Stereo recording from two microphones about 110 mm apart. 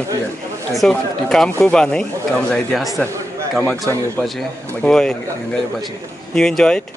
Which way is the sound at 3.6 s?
20° left (ahead or behind).